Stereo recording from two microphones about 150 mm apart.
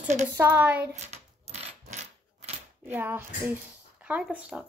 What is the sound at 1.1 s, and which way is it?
Coin, 45° right (ahead or behind).